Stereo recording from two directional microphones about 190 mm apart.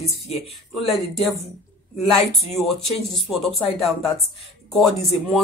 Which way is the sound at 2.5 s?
Centre (ahead or behind).